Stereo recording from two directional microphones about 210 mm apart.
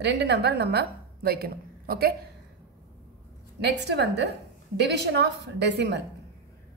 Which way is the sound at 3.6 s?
55° right (ahead or behind).